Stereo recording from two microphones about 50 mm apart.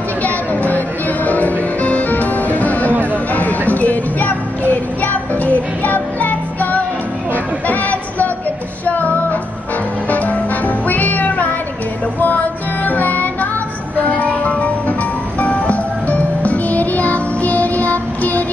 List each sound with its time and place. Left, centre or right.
0.2 s music: left
2.9 s music: right
3.3 s child singing: left
7.3 s music: left